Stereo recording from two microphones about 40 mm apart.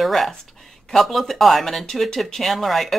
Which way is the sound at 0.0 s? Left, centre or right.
Centre.